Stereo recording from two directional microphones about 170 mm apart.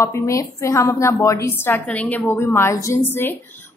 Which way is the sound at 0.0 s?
15° left (ahead or behind).